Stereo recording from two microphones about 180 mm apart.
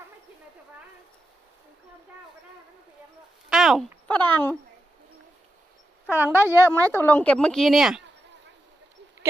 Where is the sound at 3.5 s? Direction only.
Centre (ahead or behind).